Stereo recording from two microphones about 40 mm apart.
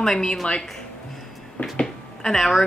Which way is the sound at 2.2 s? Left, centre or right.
Centre.